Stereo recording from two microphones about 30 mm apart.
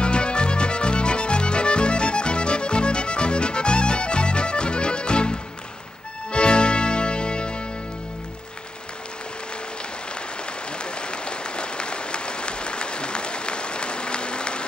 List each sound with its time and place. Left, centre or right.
0.0 s music: left
6.3 s music: left
10.8 s applause: left